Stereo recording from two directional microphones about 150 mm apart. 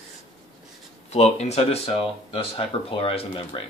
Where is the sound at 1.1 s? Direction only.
45° left (ahead or behind).